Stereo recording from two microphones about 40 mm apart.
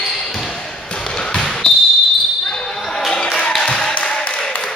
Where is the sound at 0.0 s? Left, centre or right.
Centre.